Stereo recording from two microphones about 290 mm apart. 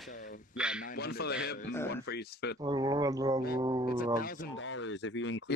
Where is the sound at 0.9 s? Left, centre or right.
Left.